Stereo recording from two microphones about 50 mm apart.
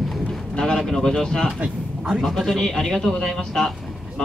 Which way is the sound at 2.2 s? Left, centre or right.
Centre.